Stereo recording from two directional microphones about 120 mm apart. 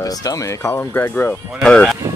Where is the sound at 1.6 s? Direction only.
5° left (ahead or behind).